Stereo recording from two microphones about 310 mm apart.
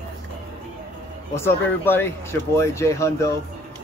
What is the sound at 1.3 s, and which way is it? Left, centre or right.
Speech, centre.